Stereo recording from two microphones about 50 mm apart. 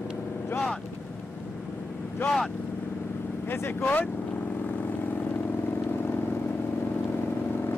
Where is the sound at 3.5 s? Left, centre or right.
Left.